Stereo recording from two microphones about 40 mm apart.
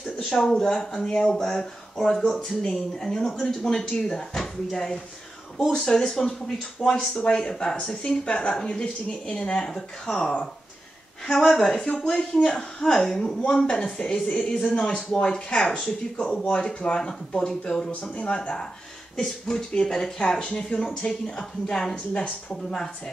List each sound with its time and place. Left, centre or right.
0.3 s speech: centre
12.9 s speech: centre
18.1 s speech: left